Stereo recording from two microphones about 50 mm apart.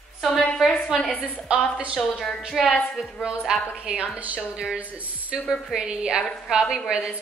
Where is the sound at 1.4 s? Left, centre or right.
Centre.